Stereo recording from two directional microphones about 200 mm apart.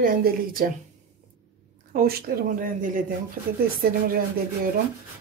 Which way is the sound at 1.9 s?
50° right (ahead or behind).